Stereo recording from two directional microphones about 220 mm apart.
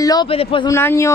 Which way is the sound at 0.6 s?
15° left (ahead or behind).